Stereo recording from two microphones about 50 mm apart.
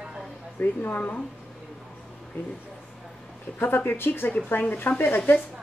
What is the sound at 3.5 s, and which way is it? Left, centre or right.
A woman's voice, left.